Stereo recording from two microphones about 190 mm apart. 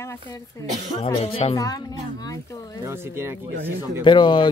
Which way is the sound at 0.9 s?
30° left (ahead or behind).